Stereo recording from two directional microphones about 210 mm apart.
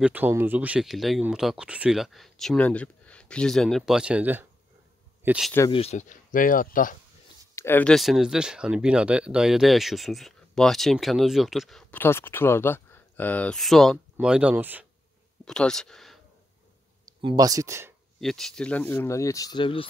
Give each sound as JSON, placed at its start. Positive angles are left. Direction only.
{"t": 0.0, "sound": "speech", "side_deg": -10}
{"t": 5.7, "sound": "speech", "side_deg": 30}
{"t": 7.5, "sound": "speech", "side_deg": 10}
{"t": 15.4, "sound": "speech", "side_deg": 5}
{"t": 17.2, "sound": "speech", "side_deg": -20}
{"t": 18.2, "sound": "speech", "side_deg": 0}